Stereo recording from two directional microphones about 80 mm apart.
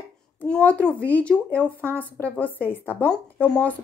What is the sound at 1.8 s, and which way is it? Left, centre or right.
Speech, right.